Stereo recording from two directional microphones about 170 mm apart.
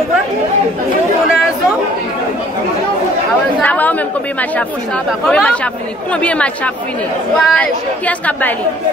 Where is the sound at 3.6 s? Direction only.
10° left (ahead or behind).